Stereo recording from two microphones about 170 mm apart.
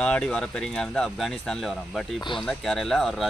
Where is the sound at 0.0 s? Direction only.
5° left (ahead or behind).